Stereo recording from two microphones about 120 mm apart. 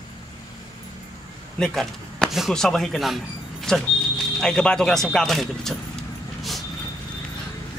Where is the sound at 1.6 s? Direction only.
5° left (ahead or behind).